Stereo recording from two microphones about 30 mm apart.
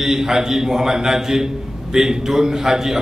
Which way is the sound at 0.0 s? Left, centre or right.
Centre.